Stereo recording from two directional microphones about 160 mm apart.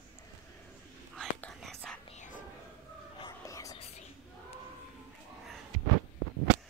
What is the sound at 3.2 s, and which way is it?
Whispering, 20° left (ahead or behind).